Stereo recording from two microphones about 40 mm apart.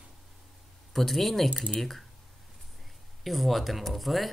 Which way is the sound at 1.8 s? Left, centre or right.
Centre.